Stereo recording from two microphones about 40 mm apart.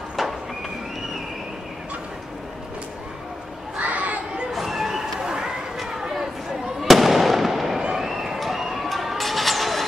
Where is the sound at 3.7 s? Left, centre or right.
Right.